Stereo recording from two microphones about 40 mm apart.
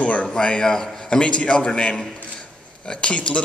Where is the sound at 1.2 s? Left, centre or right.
Left.